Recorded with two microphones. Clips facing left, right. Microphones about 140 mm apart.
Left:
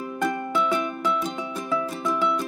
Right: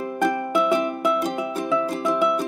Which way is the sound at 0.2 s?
20° right (ahead or behind).